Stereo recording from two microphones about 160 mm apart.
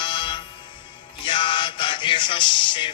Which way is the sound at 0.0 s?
30° left (ahead or behind).